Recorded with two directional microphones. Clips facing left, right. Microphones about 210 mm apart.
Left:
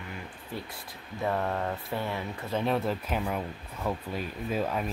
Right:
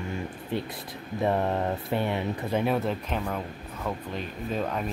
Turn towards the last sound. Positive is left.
turn(degrees=5)  # may be behind; listen again after turning